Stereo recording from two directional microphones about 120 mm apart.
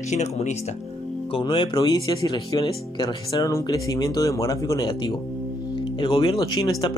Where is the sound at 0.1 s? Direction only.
70° left (ahead or behind).